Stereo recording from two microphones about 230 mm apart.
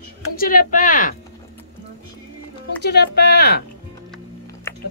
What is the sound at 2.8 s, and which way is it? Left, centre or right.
Speech, left.